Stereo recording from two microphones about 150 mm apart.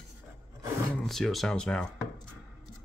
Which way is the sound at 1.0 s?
Centre (ahead or behind).